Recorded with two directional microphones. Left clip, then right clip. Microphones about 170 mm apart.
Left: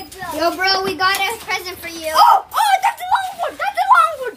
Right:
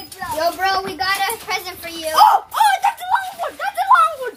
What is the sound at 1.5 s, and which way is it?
Speech, 25° right (ahead or behind).